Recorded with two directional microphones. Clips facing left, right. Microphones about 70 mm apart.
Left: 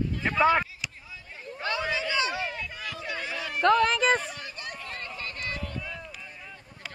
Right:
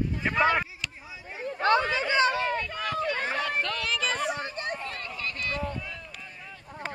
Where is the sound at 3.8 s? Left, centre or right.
Left.